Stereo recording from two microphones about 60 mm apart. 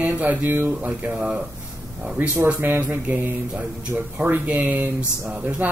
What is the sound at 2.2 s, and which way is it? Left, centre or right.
Speech, right.